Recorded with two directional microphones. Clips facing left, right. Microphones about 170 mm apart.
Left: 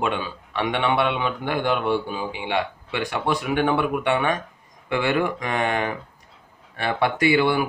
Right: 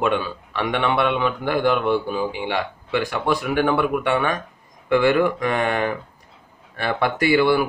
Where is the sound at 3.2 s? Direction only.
20° left (ahead or behind).